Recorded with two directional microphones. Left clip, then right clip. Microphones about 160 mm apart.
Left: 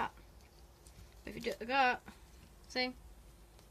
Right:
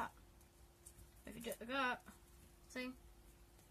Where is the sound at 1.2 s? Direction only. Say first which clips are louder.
Left 9 dB; 25° left (ahead or behind).